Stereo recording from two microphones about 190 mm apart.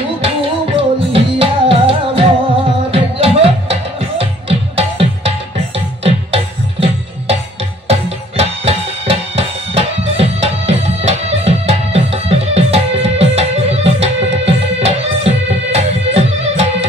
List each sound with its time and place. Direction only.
0.7 s music: 30° right (ahead or behind)